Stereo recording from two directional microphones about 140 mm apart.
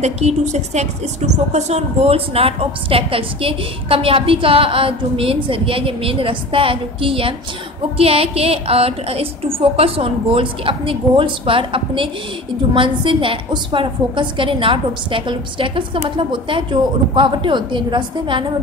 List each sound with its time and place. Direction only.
0.0 s a woman's voice: 55° right (ahead or behind); by 18.4 s 35° right (ahead or behind)